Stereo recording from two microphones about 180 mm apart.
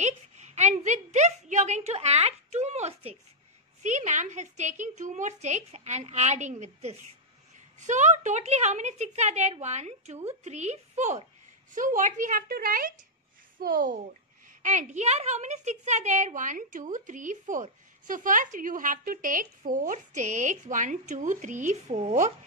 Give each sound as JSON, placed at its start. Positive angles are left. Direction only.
{"t": 0.0, "sound": "a woman's voice", "side_deg": -40}